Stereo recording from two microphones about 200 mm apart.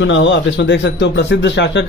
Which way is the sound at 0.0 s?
65° left (ahead or behind).